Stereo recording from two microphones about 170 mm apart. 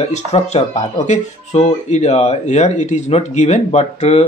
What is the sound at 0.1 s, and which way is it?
Speech, 40° left (ahead or behind).